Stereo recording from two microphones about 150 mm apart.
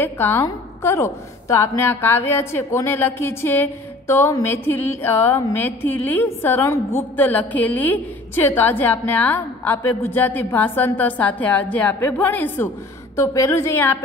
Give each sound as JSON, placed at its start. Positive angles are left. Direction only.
{"t": 0.0, "sound": "a woman's voice", "side_deg": 15}